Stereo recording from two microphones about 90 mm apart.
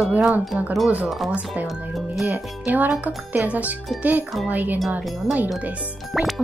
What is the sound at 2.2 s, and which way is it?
Speech, 20° right (ahead or behind).